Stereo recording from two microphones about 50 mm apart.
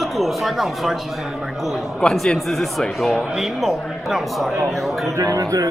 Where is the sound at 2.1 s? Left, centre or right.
Centre.